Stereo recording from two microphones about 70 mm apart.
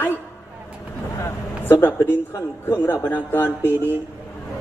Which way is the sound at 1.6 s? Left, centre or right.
Left.